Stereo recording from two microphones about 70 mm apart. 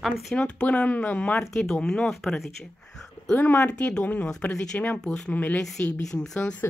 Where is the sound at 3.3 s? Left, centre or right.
Left.